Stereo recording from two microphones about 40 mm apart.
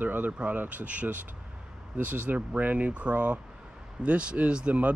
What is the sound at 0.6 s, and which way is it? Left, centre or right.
Speech, right.